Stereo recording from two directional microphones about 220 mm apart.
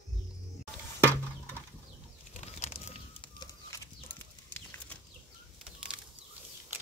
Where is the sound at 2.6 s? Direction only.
25° left (ahead or behind).